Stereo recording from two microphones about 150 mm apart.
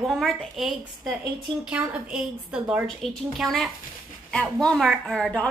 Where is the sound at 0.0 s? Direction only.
Centre (ahead or behind).